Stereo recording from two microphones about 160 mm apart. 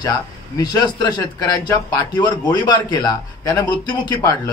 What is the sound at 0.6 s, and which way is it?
A man's voice, 25° left (ahead or behind).